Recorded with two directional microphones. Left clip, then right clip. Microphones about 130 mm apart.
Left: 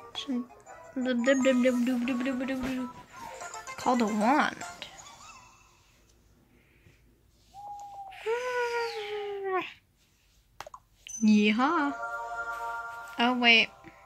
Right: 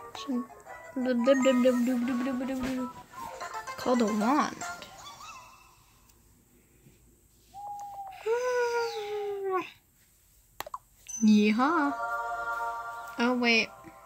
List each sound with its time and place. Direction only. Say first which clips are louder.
0.1 s speech: left 1 dB; 15° right (ahead or behind)
1.9 s music: even; centre (ahead or behind)
3.2 s music: right 3 dB; 15° right (ahead or behind)
4.1 s speech: left 2 dB; 15° right (ahead or behind)
4.7 s music: even; 15° right (ahead or behind)
7.7 s crying: right 2 dB; 20° right (ahead or behind)
10.6 s a sound: right 5 dB; 15° right (ahead or behind)
11.2 s speech: even; 30° right (ahead or behind)
12.2 s music: right 2 dB; 40° right (ahead or behind)
12.4 s music: right 2 dB; 25° right (ahead or behind)